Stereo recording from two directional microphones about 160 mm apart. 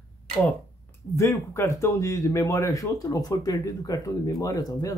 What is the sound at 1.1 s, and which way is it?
Speech, 20° left (ahead or behind).